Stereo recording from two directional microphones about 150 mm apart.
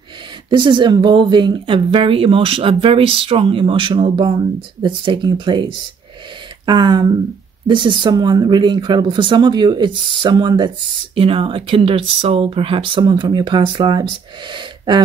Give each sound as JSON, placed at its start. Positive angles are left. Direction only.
{"t": 0.5, "sound": "a woman's voice", "side_deg": -30}